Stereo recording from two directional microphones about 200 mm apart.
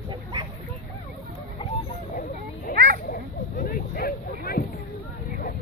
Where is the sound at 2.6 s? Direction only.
45° left (ahead or behind).